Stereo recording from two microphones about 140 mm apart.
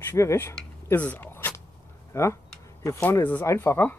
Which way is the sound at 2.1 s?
20° left (ahead or behind).